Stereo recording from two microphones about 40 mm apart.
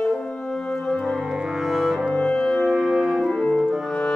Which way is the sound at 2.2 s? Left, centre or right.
Centre.